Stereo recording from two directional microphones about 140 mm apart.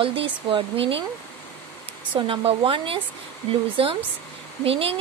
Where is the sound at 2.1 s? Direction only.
40° right (ahead or behind).